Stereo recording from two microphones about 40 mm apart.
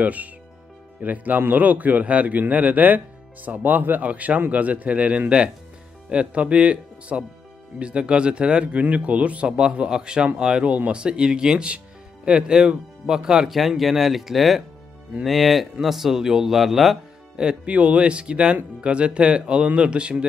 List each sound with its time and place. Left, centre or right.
0.0 s speech: right
4.1 s speech: right
9.6 s speech: right
10.6 s speech: right; by 13.5 s centre
13.5 s speech: centre
17.6 s speech: right